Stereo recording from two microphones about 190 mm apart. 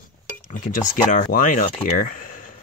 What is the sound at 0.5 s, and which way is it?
Speech, 45° left (ahead or behind).